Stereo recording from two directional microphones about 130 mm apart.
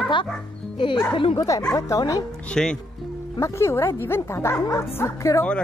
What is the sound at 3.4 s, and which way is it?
Speech, 20° left (ahead or behind).